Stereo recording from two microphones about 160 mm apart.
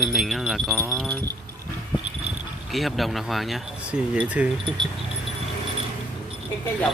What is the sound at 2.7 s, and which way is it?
Speech, centre (ahead or behind).